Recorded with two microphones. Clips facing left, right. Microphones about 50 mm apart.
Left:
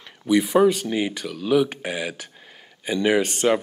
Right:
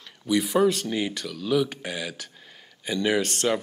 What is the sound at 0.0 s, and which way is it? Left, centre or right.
Speech, centre.